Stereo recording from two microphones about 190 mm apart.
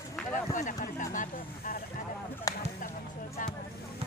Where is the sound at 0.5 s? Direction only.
40° left (ahead or behind).